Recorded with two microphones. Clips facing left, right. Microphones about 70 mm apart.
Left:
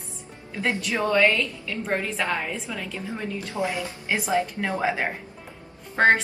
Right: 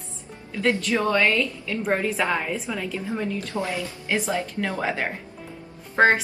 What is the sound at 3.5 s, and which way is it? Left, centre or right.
A woman's voice, left.